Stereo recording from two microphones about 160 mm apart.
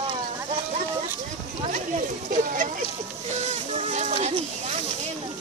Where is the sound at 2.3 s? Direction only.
55° right (ahead or behind).